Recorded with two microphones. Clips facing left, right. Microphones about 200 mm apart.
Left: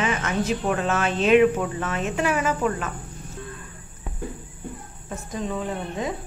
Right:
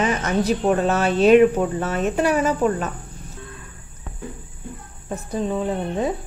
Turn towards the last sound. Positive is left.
turn(degrees=-30)  # may be behind; listen again after turning